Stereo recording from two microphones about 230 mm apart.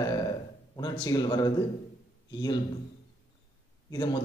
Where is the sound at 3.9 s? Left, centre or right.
Centre.